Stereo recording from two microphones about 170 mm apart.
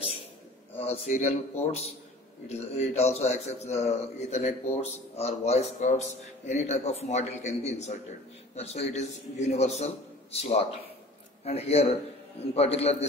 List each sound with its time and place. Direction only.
0.7 s a man's voice: 35° left (ahead or behind)